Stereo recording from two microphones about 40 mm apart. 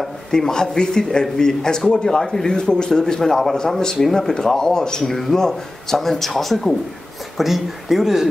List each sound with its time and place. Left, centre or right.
0.5 s a man's voice: centre
5.0 s speech: centre